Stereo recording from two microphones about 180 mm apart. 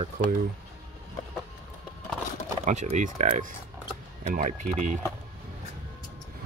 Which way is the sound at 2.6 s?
40° right (ahead or behind).